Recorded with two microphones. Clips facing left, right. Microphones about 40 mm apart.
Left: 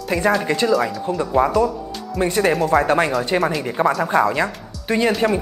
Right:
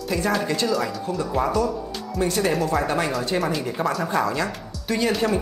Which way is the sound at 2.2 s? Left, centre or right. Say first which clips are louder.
Left 4 dB; left.